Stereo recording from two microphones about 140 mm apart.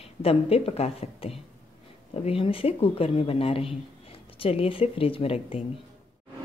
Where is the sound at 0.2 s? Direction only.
45° left (ahead or behind).